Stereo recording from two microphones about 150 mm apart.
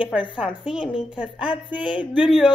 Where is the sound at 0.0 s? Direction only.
10° right (ahead or behind).